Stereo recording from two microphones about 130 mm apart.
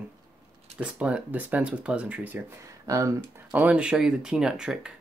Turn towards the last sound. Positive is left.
turn(degrees=-5)  # may be behind; listen again after turning